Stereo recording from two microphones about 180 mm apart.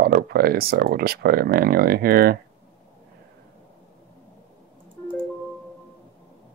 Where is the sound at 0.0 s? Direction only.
60° right (ahead or behind).